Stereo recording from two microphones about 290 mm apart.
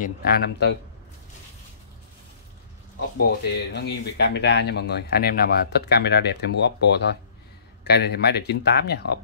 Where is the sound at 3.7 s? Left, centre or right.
Left.